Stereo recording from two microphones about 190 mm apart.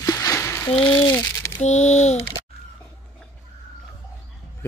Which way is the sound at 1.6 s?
35° left (ahead or behind).